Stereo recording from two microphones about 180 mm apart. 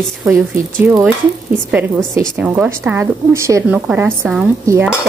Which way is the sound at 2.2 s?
10° right (ahead or behind).